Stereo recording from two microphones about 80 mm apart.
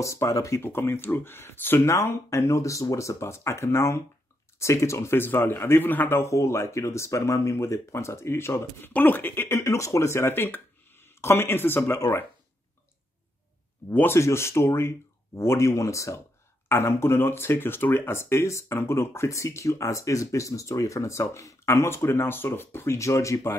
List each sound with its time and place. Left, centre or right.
0.0 s speech: left
0.7 s speech: left
13.9 s speech: left